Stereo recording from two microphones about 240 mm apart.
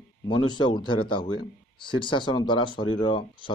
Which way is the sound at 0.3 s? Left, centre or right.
Centre.